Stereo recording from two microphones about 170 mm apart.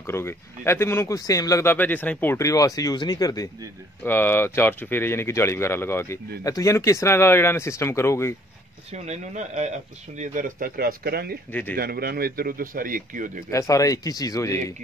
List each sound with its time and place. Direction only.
0.0 s speech: 15° left (ahead or behind)
4.0 s speech: 10° left (ahead or behind)
8.9 s speech: 40° right (ahead or behind)
13.5 s speech: 20° left (ahead or behind)